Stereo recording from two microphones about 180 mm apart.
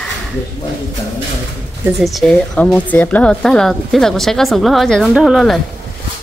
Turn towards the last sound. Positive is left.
turn(degrees=0)  # may be behind; listen again after turning